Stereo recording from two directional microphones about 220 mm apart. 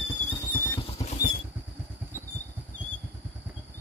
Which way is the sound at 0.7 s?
25° left (ahead or behind).